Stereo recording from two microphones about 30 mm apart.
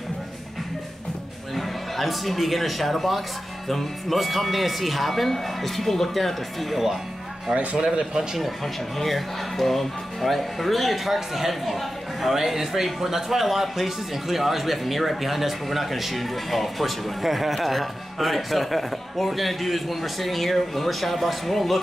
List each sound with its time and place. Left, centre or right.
1.5 s a man's voice: centre
7.8 s speech: right
8.9 s a man's voice: centre
11.1 s a man's voice: centre